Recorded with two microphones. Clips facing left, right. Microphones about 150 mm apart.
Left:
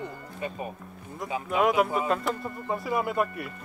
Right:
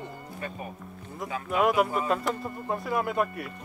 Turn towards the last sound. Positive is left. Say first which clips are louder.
# even
turn(degrees=0)  # may be behind; listen again after turning